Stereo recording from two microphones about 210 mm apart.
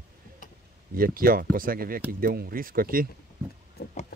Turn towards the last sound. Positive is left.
turn(degrees=50)  # may be behind; listen again after turning